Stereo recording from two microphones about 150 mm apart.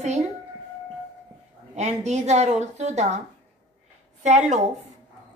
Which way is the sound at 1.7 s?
50° right (ahead or behind).